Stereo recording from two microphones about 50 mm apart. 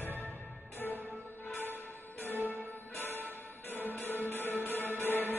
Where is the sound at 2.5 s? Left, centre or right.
Left.